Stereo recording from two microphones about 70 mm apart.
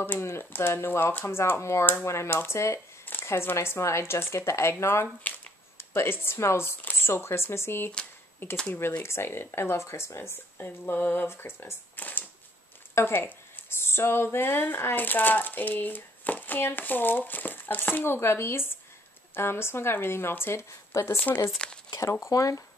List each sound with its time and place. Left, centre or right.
0.0 s speech: left
21.6 s speech: centre
22.2 s speech: left